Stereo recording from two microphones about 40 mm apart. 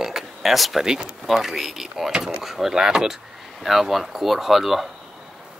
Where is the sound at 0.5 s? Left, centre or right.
Centre.